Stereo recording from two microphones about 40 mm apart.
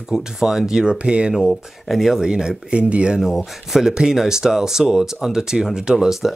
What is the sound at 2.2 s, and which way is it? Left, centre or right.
Speech, centre.